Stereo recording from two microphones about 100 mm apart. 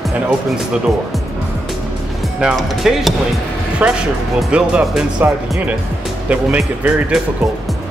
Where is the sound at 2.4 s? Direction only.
5° right (ahead or behind).